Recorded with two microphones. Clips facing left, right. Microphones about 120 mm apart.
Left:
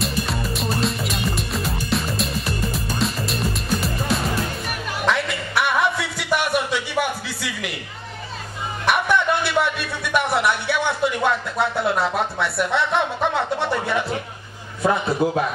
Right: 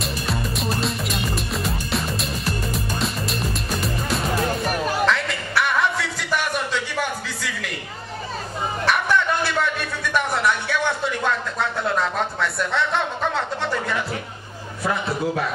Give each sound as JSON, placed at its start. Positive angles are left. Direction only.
{"t": 0.0, "sound": "music", "side_deg": 0}
{"t": 5.0, "sound": "a sound", "side_deg": 10}
{"t": 8.8, "sound": "music", "side_deg": 10}
{"t": 14.8, "sound": "a man's voice", "side_deg": 20}